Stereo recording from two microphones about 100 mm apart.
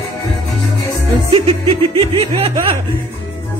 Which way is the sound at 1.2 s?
80° right.